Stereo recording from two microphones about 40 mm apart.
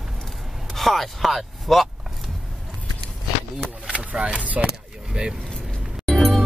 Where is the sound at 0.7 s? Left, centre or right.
Centre.